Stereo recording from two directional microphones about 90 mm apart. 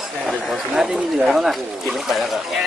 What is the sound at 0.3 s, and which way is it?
Chatter, 5° right (ahead or behind).